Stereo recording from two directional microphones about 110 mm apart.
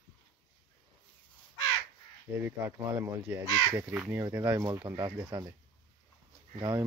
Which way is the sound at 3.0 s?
30° right (ahead or behind).